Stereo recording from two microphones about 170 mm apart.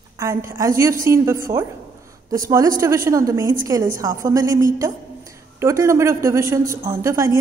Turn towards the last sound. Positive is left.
turn(degrees=-15)  # may be behind; listen again after turning